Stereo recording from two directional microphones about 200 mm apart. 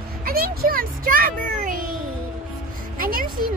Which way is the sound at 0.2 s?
45° right (ahead or behind).